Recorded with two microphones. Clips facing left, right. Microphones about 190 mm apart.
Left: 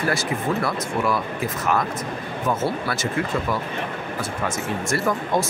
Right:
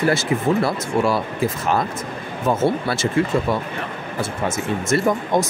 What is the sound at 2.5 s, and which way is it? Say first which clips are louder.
Speech: right 5 dB; 30° right (ahead or behind).